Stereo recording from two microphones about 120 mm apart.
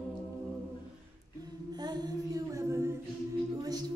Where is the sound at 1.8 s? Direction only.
30° right (ahead or behind).